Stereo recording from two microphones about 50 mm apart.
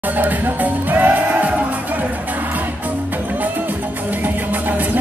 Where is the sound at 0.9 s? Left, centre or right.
Right.